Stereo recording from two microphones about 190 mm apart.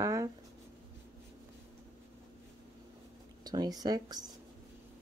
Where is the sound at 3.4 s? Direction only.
20° right (ahead or behind).